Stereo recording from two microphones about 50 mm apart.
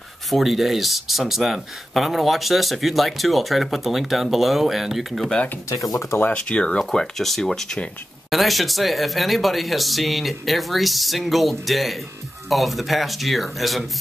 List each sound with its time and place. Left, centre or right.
0.3 s speech: centre
5.9 s speech: left
6.3 s speech: centre
6.8 s speech: centre